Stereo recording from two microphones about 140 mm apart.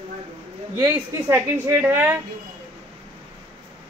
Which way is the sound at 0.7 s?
15° right (ahead or behind).